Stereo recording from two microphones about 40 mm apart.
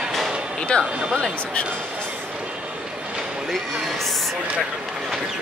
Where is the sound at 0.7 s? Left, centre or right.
Left.